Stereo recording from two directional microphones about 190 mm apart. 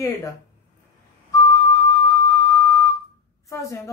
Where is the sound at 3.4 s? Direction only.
15° left (ahead or behind).